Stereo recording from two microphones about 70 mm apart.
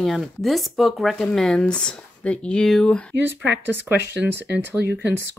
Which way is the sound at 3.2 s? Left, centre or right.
Right.